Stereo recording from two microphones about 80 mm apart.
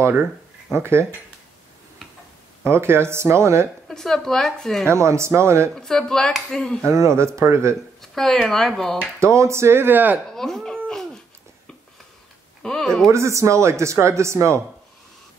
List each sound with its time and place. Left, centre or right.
0.7 s speech: right
2.6 s speech: right
3.9 s speech: centre
4.8 s speech: right
5.8 s speech: centre
6.9 s speech: right
8.0 s speech: centre
9.2 s speech: right
10.3 s speech: centre
12.6 s speech: centre
13.1 s speech: right